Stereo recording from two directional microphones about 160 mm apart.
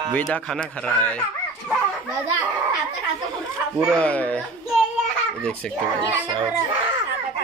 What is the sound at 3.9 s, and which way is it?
Speech, 10° left (ahead or behind).